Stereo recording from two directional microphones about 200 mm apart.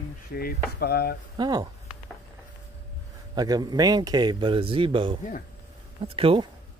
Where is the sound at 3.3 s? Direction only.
20° right (ahead or behind).